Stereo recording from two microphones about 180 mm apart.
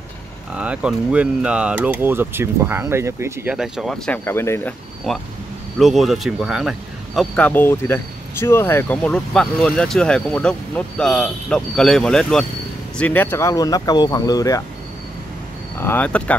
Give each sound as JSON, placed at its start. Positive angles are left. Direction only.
{"t": 0.6, "sound": "speech", "side_deg": -5}
{"t": 3.5, "sound": "speech", "side_deg": 0}
{"t": 5.1, "sound": "speech", "side_deg": 0}
{"t": 7.2, "sound": "speech", "side_deg": 10}
{"t": 15.8, "sound": "speech", "side_deg": 10}